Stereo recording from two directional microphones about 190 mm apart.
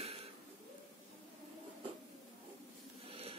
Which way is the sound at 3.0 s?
30° right (ahead or behind).